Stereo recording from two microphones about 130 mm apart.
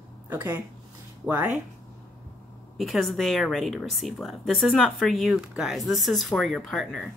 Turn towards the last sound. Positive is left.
turn(degrees=0)  # may be behind; listen again after turning